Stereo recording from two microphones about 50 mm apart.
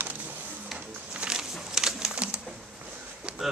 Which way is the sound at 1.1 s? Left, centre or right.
Centre.